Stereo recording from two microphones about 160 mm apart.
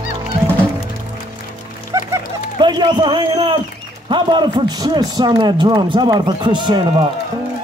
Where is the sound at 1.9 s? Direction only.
25° right (ahead or behind).